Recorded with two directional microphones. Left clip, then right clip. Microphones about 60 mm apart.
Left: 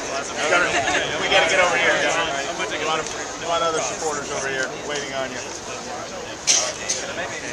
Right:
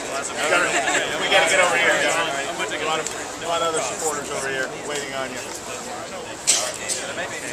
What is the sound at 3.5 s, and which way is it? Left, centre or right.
Speech, centre.